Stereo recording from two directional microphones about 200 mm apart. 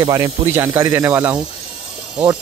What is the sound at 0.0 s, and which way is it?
Speech, 20° right (ahead or behind).